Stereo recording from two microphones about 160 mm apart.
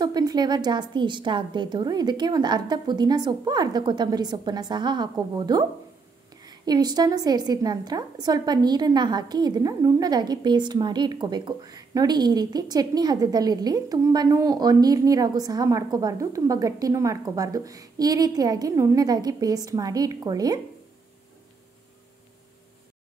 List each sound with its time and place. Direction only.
0.0 s a woman's voice: 25° right (ahead or behind)